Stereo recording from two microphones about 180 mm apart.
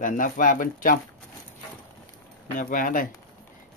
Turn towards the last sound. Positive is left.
turn(degrees=50)  # may be behind; listen again after turning